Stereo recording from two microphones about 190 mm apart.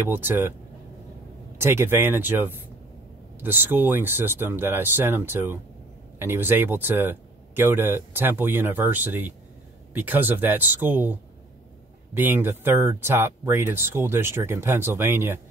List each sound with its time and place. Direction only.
0.1 s speech: 10° right (ahead or behind)
1.6 s speech: 10° right (ahead or behind)